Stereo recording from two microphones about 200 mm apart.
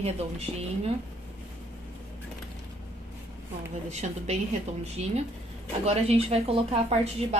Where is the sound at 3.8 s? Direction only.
35° right (ahead or behind).